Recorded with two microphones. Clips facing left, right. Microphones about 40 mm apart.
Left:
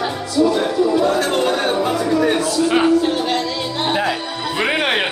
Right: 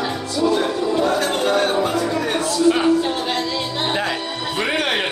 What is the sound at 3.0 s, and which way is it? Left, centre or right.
Music, centre.